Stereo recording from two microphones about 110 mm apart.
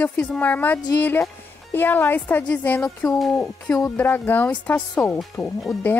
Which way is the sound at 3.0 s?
35° left (ahead or behind).